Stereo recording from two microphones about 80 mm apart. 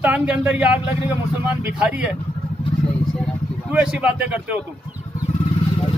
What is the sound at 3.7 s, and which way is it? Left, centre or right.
Speech, centre.